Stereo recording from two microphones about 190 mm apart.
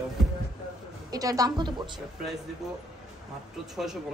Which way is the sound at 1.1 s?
20° right (ahead or behind).